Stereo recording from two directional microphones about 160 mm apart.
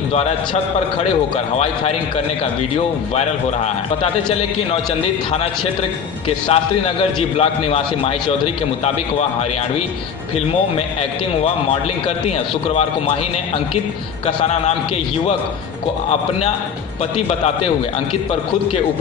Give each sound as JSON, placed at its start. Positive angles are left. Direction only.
{"t": 1.3, "sound": "a man's voice", "side_deg": 40}
{"t": 3.2, "sound": "a man's voice", "side_deg": 45}
{"t": 6.2, "sound": "a man's voice", "side_deg": 35}
{"t": 12.3, "sound": "a man's voice", "side_deg": 40}
{"t": 14.2, "sound": "a man's voice", "side_deg": 45}
{"t": 16.1, "sound": "a man's voice", "side_deg": 40}